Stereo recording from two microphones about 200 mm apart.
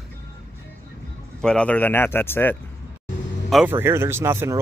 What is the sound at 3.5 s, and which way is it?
Speech, 5° right (ahead or behind).